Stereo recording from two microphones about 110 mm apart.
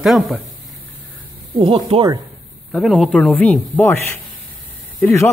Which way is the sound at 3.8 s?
25° left (ahead or behind).